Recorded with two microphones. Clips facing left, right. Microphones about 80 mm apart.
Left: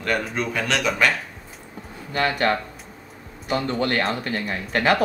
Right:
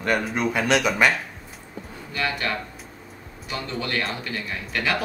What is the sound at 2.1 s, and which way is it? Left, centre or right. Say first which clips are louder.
Speech: left 6 dB; left.